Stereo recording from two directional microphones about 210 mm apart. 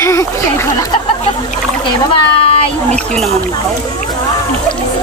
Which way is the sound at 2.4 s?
25° left (ahead or behind).